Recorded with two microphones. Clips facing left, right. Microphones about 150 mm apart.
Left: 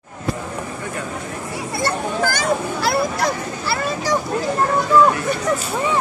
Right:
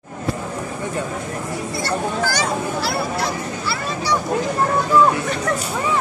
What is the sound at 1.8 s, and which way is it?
Speech, 50° left (ahead or behind).